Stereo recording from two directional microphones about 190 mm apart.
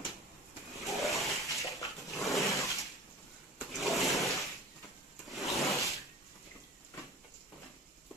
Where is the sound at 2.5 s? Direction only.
Centre (ahead or behind).